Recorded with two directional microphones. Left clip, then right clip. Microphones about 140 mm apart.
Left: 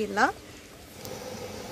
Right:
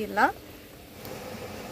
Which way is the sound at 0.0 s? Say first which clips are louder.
Right 1 dB; 25° left (ahead or behind).